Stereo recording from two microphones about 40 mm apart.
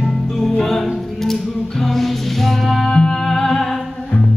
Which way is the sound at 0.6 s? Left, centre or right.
Centre.